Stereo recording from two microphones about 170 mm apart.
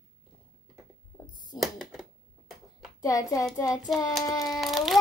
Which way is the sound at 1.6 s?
Centre (ahead or behind).